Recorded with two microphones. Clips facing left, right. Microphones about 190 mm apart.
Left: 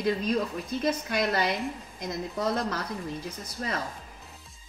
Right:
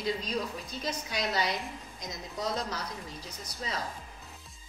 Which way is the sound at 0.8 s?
55° left (ahead or behind).